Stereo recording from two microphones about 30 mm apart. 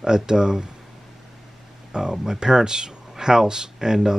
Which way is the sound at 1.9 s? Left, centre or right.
Right.